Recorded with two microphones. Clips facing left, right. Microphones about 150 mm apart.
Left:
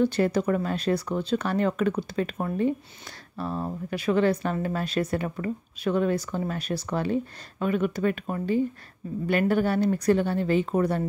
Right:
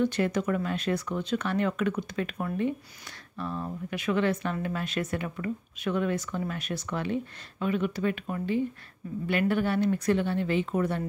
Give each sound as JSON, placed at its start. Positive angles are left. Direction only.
{"t": 0.0, "sound": "a woman's voice", "side_deg": 35}